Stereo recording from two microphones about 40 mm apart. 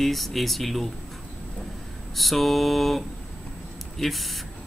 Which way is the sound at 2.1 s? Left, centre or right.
Centre.